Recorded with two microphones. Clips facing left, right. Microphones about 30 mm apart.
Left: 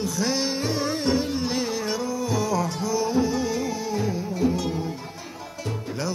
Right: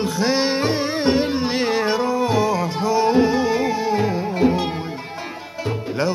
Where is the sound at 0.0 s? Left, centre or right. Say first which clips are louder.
Right 6 dB; right.